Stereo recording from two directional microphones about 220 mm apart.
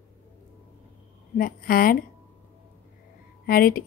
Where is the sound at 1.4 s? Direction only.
40° left (ahead or behind).